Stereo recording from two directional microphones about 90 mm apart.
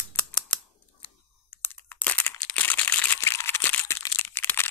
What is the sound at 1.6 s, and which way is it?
Crumpling, 20° left (ahead or behind).